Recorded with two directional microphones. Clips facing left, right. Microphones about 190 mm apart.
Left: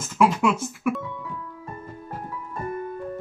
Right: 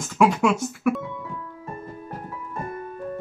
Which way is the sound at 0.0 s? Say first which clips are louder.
Right 1 dB; centre (ahead or behind).